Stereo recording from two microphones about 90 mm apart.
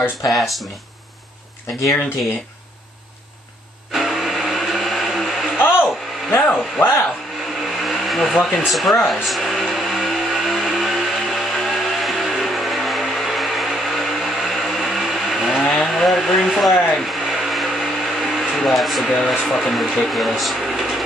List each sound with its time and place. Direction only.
0.3 s speech: centre (ahead or behind)
3.9 s a sound: 5° right (ahead or behind)
5.6 s a sound: 25° left (ahead or behind)
6.3 s speech: 20° left (ahead or behind)
7.8 s vehicle: centre (ahead or behind)
8.5 s speech: centre (ahead or behind)
9.0 s vehicle: centre (ahead or behind)
15.6 s a sound: 5° left (ahead or behind)
19.2 s speech: centre (ahead or behind)